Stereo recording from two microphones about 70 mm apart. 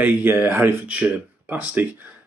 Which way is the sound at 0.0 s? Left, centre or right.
Right.